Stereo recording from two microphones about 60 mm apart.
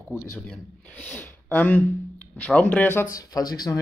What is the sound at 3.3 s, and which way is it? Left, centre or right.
Speech, left.